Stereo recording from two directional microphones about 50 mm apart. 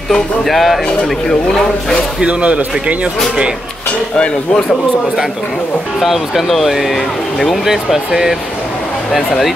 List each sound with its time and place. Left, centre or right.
0.5 s speech: centre
2.2 s speech: right
5.9 s speech: centre